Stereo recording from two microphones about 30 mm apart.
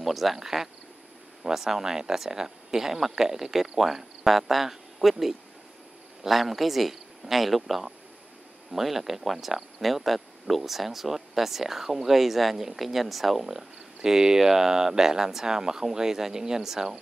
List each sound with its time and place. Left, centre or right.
0.0 s speech: centre
8.9 s speech: centre